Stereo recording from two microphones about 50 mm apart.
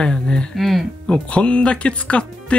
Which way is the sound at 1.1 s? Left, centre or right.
Left.